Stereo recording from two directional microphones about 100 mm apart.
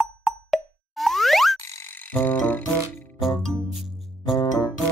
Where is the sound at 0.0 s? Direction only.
Centre (ahead or behind).